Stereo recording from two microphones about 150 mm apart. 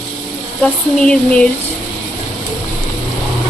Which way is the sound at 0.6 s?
5° left (ahead or behind).